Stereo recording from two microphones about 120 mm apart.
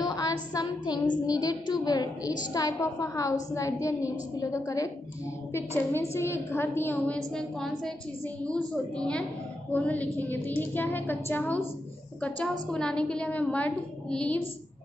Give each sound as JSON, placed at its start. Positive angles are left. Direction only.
{"t": 0.0, "sound": "child singing", "side_deg": 35}
{"t": 2.5, "sound": "a woman's voice", "side_deg": 30}
{"t": 5.9, "sound": "a woman's voice", "side_deg": 20}
{"t": 7.3, "sound": "a woman's voice", "side_deg": 5}